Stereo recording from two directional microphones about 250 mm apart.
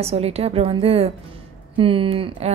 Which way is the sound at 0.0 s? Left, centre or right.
Right.